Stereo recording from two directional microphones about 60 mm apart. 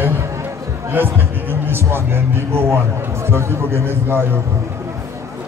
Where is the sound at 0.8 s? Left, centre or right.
Right.